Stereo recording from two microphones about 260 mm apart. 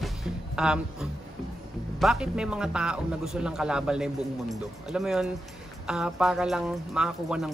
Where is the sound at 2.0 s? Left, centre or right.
Centre.